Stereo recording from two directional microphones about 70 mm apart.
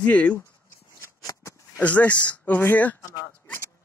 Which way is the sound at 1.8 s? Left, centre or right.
Left.